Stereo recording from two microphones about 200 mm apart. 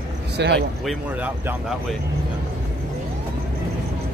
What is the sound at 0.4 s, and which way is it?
Speech, 60° right (ahead or behind).